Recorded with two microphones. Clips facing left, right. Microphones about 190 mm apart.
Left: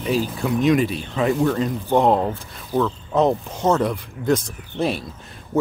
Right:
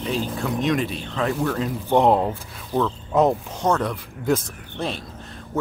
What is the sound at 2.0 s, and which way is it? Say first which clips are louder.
Speech: even; 10° right (ahead or behind).